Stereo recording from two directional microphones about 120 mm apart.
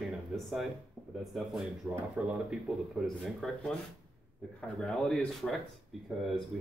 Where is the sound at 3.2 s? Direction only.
Centre (ahead or behind).